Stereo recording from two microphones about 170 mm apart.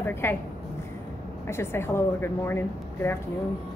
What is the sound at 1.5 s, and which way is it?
A woman's voice, 15° left (ahead or behind).